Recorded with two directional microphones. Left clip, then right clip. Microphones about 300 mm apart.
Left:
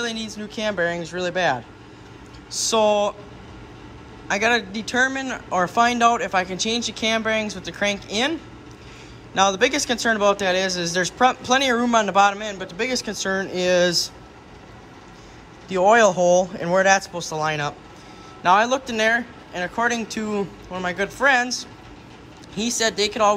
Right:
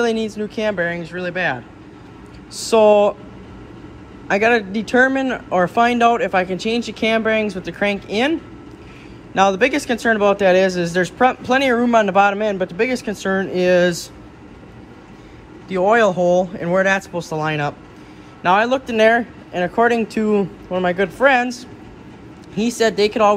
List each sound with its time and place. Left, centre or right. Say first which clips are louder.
0.0 s speech: right 9 dB; centre
4.3 s speech: right 5 dB; centre
15.7 s speech: right 1 dB; centre